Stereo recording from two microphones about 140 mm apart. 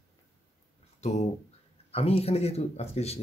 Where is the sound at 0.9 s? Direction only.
55° left (ahead or behind).